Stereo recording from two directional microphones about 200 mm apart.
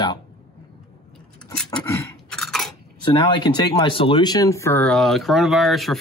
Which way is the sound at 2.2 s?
Centre (ahead or behind).